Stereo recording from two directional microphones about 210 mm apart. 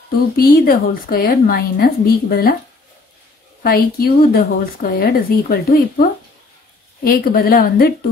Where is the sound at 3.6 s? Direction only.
45° left (ahead or behind).